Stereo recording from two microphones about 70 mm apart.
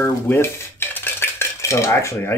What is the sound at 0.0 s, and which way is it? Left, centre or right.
Dishes, left.